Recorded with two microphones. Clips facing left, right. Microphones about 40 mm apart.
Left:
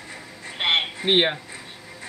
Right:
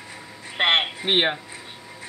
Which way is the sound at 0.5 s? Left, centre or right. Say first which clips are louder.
Right 2 dB; right.